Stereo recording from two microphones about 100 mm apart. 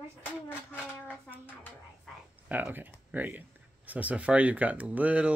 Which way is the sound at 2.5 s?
20° right (ahead or behind).